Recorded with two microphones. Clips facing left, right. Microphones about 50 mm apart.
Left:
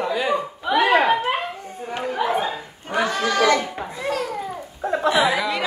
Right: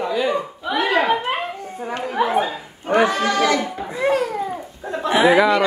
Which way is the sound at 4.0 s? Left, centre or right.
Right.